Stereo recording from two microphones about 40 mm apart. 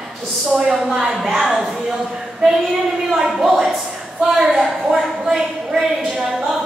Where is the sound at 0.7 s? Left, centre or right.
Centre.